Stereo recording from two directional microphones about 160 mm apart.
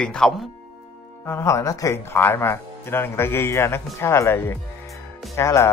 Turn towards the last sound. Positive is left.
turn(degrees=20)  # may be behind; listen again after turning